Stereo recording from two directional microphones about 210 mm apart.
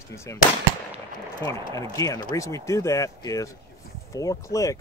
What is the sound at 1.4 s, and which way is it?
Speech, 15° left (ahead or behind).